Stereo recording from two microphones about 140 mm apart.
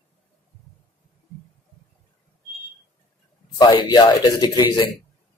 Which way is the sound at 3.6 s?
35° left (ahead or behind).